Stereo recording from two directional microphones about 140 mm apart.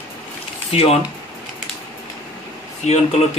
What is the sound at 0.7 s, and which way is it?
Speech, 45° left (ahead or behind).